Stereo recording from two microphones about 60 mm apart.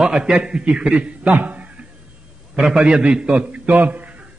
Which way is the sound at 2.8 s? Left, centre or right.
Right.